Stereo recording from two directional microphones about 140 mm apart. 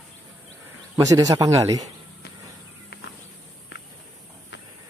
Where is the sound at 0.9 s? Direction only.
25° right (ahead or behind).